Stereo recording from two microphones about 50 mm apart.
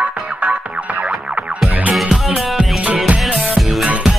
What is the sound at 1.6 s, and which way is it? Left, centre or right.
Music, right.